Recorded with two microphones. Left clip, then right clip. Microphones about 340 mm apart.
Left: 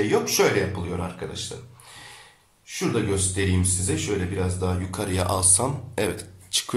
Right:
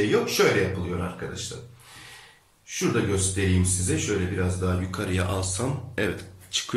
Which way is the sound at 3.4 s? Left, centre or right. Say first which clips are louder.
Left 1 dB; centre.